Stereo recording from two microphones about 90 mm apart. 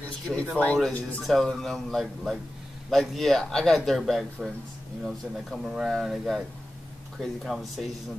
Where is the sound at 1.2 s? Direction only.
Centre (ahead or behind).